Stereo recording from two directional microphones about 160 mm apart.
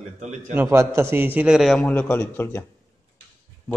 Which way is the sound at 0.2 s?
50° right (ahead or behind).